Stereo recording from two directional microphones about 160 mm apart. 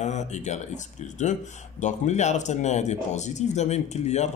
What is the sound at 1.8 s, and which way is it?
Speech, 50° left (ahead or behind).